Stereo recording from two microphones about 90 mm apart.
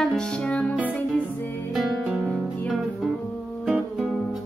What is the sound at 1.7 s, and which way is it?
Music, centre (ahead or behind).